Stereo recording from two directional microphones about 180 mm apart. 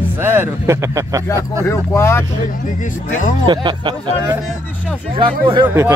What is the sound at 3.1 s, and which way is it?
Speech, 50° left (ahead or behind).